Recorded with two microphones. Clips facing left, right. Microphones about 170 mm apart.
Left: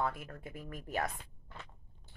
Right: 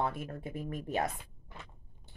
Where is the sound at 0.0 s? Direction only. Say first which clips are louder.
Right 2 dB; 25° right (ahead or behind).